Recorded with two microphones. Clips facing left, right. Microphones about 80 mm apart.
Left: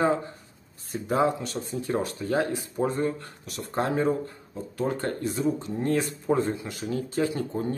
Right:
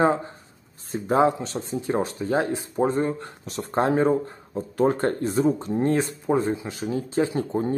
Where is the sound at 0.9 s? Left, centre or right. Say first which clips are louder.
Right 4 dB; right.